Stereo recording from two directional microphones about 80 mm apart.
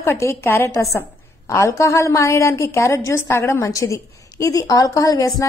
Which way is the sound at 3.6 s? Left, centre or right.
Left.